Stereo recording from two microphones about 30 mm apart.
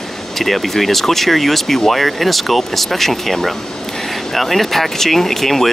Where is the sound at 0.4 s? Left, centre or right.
Centre.